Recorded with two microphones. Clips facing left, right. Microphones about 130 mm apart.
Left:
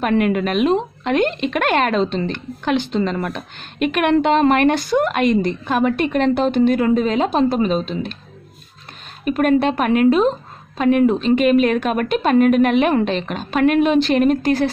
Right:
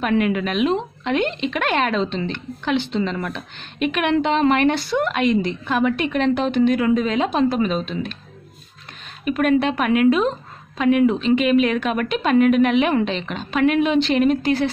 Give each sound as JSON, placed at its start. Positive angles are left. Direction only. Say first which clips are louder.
{"t": 0.0, "sound": "a woman's voice", "louder": "left 2 dB", "side_deg": 45}
{"t": 9.2, "sound": "a woman's voice", "louder": "left 2 dB", "side_deg": 40}